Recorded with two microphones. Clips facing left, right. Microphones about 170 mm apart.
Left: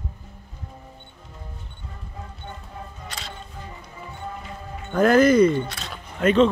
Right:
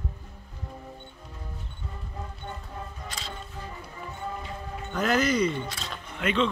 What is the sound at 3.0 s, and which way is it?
Music, 65° left (ahead or behind).